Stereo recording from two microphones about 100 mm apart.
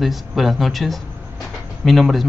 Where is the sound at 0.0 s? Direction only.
Centre (ahead or behind).